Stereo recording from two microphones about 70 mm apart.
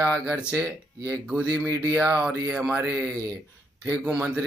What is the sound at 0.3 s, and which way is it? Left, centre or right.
Speech, centre.